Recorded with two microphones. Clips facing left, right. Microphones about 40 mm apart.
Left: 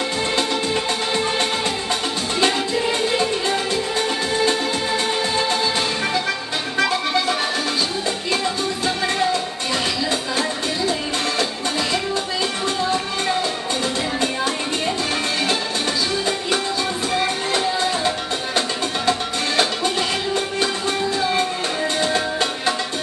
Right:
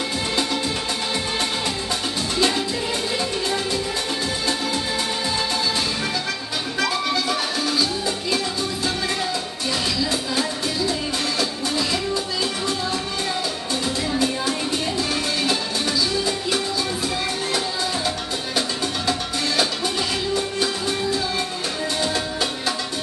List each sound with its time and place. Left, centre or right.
2.3 s music: left
6.8 s music: centre
10.3 s music: centre
12.6 s music: centre
16.3 s music: centre
22.0 s music: centre